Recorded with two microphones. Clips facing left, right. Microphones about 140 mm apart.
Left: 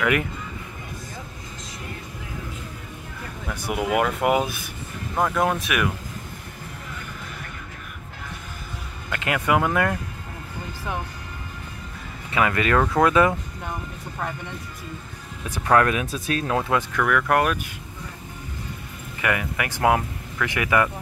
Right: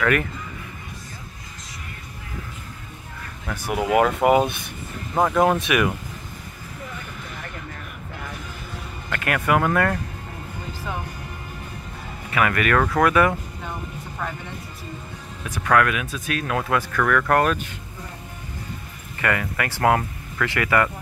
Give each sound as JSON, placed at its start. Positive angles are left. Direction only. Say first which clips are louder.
{"t": 0.0, "sound": "speech", "louder": "right 1 dB", "side_deg": 15}
{"t": 3.8, "sound": "speech", "louder": "right 4 dB", "side_deg": 0}
{"t": 9.1, "sound": "speech", "louder": "right 1 dB", "side_deg": 15}
{"t": 12.3, "sound": "speech", "louder": "even", "side_deg": 25}
{"t": 15.5, "sound": "speech", "louder": "left 1 dB", "side_deg": 30}
{"t": 17.0, "sound": "speech", "louder": "right 2 dB", "side_deg": 10}
{"t": 19.2, "sound": "speech", "louder": "right 1 dB", "side_deg": 15}